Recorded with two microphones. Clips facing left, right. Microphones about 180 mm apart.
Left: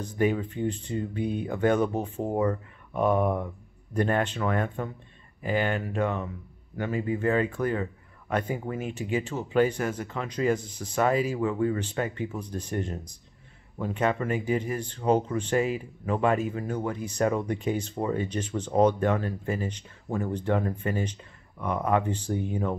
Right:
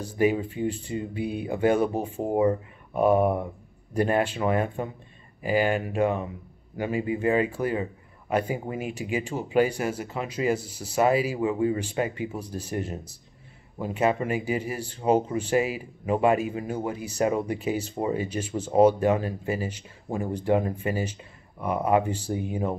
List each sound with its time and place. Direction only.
0.0 s speech: 10° right (ahead or behind)